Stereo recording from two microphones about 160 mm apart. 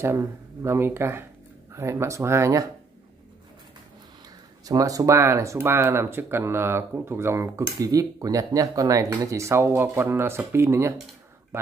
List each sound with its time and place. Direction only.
0.0 s speech: 15° right (ahead or behind)
4.6 s speech: 20° right (ahead or behind)